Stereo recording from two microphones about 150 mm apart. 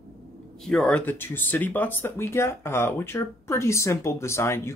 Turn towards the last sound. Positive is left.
turn(degrees=15)  # may be behind; listen again after turning